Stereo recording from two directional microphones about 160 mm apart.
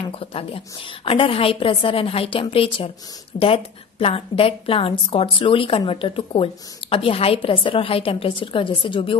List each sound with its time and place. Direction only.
0.1 s a woman's voice: 35° left (ahead or behind)